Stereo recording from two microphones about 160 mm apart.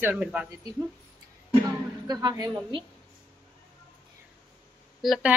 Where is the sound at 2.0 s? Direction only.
25° right (ahead or behind).